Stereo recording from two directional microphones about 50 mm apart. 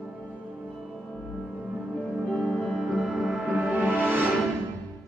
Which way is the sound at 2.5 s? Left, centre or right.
Centre.